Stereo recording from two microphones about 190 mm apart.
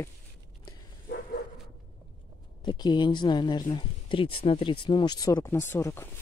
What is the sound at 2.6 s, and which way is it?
Speech, 20° left (ahead or behind).